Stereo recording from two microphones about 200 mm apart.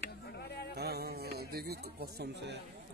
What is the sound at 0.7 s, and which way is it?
A man's voice, 50° right (ahead or behind).